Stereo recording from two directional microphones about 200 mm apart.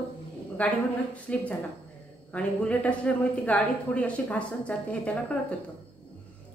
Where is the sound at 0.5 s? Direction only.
5° left (ahead or behind).